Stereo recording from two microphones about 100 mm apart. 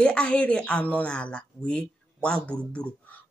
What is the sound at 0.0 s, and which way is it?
Speech, 10° left (ahead or behind).